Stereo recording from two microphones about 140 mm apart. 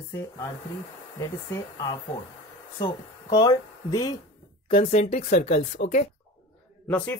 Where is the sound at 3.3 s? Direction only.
25° left (ahead or behind).